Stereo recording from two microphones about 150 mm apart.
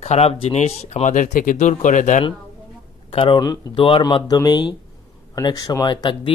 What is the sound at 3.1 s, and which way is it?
Speech, 40° left (ahead or behind).